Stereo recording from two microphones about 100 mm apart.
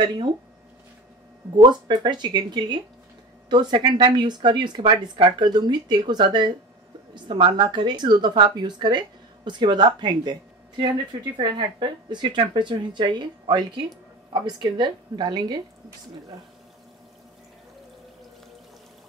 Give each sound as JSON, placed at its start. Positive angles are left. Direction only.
{"t": 1.6, "sound": "speech", "side_deg": -50}
{"t": 11.3, "sound": "speech", "side_deg": -50}